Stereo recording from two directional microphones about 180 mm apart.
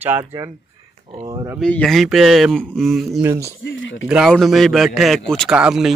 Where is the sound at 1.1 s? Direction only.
25° right (ahead or behind).